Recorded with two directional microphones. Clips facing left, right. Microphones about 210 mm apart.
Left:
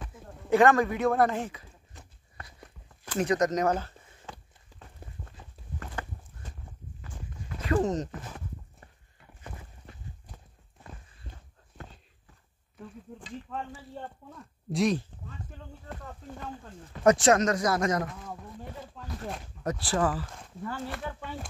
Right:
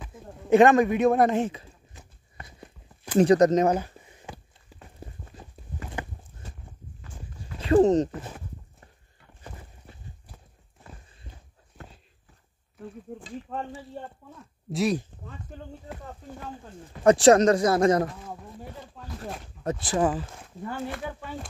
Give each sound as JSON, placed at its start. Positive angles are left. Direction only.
{"t": 0.5, "sound": "speech", "side_deg": -20}
{"t": 2.3, "sound": "clip-clop", "side_deg": -20}
{"t": 3.2, "sound": "speech", "side_deg": -30}
{"t": 3.6, "sound": "a sound", "side_deg": -15}
{"t": 7.6, "sound": "speech", "side_deg": -30}
{"t": 13.5, "sound": "speech", "side_deg": -40}
{"t": 14.7, "sound": "speech", "side_deg": -5}
{"t": 17.0, "sound": "speech", "side_deg": -30}
{"t": 19.0, "sound": "speech", "side_deg": -5}
{"t": 19.6, "sound": "speech", "side_deg": -25}
{"t": 20.9, "sound": "speech", "side_deg": 0}